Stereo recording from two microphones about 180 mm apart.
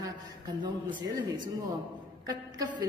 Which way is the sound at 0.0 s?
25° right (ahead or behind).